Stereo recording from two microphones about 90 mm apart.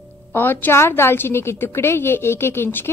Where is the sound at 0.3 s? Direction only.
20° left (ahead or behind).